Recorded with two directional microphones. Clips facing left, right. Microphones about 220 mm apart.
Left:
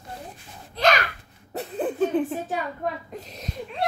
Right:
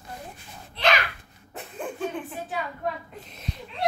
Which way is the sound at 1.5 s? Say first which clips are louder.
Left 9 dB; 35° left (ahead or behind).